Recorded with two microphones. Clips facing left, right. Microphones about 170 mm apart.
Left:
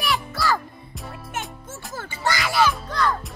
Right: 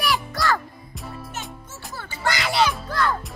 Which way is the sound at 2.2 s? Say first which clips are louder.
Even; 20° right (ahead or behind).